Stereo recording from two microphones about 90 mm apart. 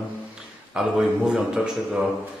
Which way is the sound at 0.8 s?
5° right (ahead or behind).